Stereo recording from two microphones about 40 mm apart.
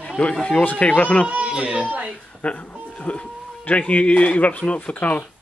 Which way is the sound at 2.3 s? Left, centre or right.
Left.